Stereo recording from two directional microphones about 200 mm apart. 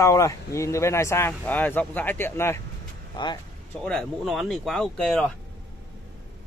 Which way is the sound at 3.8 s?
5° left (ahead or behind).